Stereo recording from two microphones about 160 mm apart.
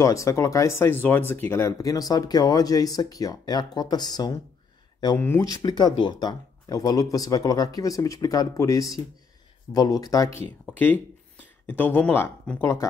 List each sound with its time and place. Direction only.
0.0 s speech: 20° left (ahead or behind)
5.1 s speech: 15° left (ahead or behind)
10.8 s speech: 10° left (ahead or behind)